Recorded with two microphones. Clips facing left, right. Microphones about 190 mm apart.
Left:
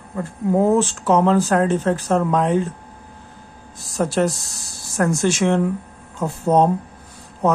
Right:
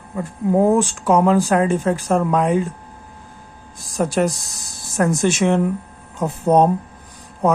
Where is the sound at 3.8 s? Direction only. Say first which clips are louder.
Right 1 dB; 15° right (ahead or behind).